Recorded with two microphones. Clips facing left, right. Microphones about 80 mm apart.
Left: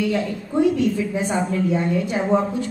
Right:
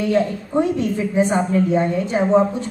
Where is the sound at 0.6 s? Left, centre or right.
Right.